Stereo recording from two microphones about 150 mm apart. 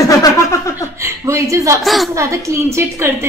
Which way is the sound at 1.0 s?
20° right (ahead or behind).